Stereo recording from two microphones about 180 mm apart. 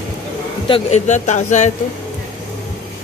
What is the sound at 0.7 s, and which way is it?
Speech, 40° left (ahead or behind).